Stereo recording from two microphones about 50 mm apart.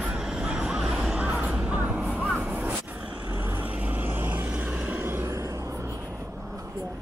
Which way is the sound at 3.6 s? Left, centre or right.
Right.